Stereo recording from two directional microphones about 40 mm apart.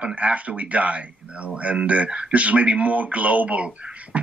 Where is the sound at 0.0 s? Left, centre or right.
Right.